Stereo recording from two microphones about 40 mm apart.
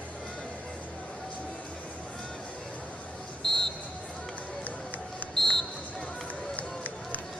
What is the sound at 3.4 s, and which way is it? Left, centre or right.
Basketball bounce, centre.